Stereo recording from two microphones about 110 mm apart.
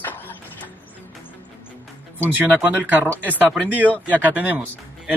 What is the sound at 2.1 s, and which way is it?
Speech, 15° right (ahead or behind).